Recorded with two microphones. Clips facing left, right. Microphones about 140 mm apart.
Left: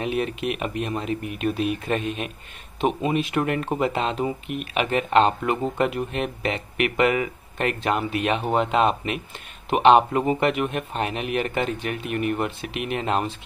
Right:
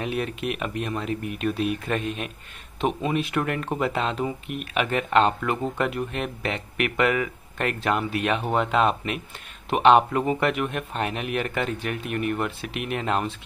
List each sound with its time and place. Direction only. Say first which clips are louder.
0.0 s speech: left 2 dB; 5° left (ahead or behind)